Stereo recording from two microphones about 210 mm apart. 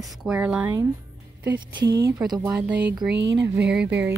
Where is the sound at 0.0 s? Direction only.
5° right (ahead or behind).